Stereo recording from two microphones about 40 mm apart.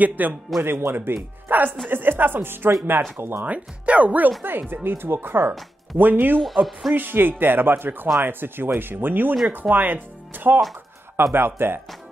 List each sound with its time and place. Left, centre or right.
0.0 s speech: right
0.7 s speech: right
1.1 s speech: right
2.9 s speech: right
3.4 s speech: right
4.4 s speech: right
4.8 s speech: right
5.9 s speech: right
6.4 s speech: centre
6.9 s speech: right
11.3 s speech: right